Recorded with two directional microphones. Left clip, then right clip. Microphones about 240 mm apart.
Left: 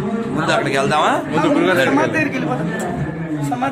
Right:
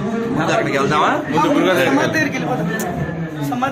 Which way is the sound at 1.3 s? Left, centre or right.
Centre.